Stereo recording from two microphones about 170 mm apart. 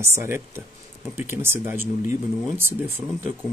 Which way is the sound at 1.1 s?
15° right (ahead or behind).